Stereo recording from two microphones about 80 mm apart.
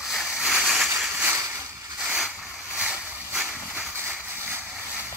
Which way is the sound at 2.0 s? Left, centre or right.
Centre.